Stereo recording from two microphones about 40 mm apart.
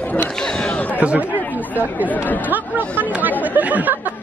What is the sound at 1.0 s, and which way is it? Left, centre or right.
Chatter, right.